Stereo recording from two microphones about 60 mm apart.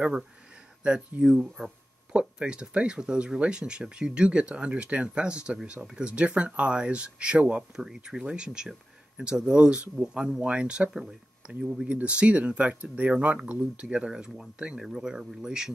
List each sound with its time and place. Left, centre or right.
1.2 s speech: centre